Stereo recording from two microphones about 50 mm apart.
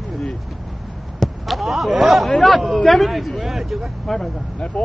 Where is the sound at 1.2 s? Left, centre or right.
Centre.